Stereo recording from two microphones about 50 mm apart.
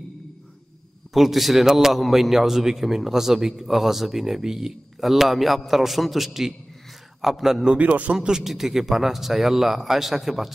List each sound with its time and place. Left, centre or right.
1.1 s a man's voice: centre
7.6 s a man's voice: right; by 10.5 s centre